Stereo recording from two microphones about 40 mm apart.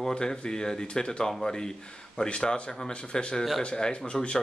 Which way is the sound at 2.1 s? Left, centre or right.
Left.